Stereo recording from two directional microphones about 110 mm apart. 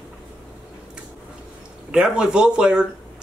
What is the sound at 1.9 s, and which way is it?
Speech, 10° right (ahead or behind).